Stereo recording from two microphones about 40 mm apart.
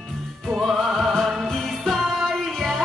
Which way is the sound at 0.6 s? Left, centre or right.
Centre.